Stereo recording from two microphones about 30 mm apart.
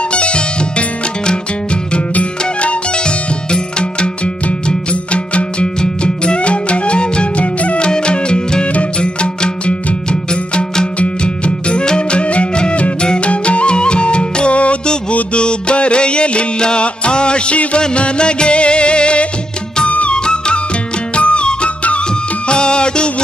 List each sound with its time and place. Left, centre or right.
0.1 s music: left
3.0 s music: left
5.1 s music: left
5.8 s music: left
12.2 s music: left
13.0 s music: left
13.3 s music: left
19.9 s music: left
20.2 s music: left